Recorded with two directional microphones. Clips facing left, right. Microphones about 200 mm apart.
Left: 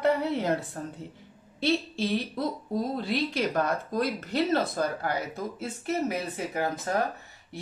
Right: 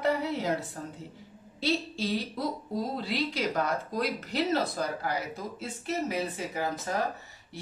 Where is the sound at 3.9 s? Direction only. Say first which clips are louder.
Left 4 dB; 55° left (ahead or behind).